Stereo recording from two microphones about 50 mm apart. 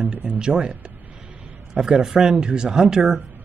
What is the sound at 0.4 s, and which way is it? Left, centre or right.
Speech, centre.